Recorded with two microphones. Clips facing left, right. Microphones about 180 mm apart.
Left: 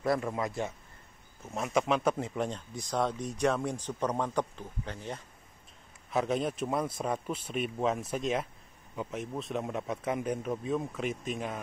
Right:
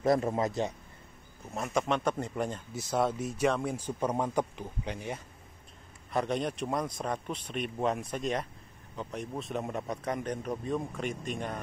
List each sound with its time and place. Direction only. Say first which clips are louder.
0.0 s a man's voice: right 3 dB; 25° right (ahead or behind)
1.5 s speech: left 1 dB; centre (ahead or behind); by 5.2 s 15° right (ahead or behind)
6.0 s speech: left 1 dB; centre (ahead or behind)